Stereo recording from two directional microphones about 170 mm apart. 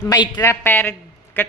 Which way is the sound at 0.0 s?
20° left (ahead or behind).